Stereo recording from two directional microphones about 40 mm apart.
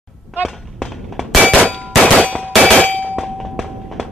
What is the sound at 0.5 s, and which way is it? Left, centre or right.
Clang, centre.